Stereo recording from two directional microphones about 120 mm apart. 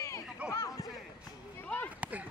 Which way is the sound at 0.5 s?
25° left (ahead or behind).